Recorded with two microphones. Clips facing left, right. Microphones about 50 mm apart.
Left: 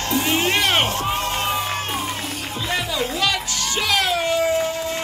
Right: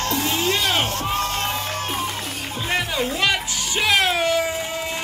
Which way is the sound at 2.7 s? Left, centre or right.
Right.